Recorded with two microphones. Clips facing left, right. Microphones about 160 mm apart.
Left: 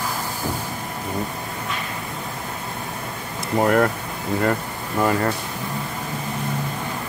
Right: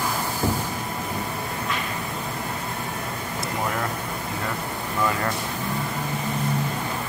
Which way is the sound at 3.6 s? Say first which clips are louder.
Left 11 dB; 65° left (ahead or behind).